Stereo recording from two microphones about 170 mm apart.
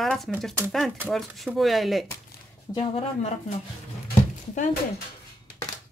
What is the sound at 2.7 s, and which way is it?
Speech, 35° left (ahead or behind).